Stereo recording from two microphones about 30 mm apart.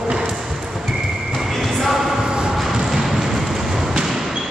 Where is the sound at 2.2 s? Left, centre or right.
Right.